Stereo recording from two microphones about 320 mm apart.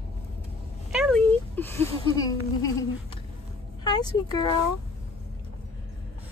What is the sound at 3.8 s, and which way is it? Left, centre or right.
Music, centre.